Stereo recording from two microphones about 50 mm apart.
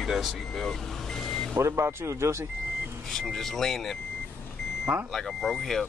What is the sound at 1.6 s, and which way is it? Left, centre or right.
Speech, right.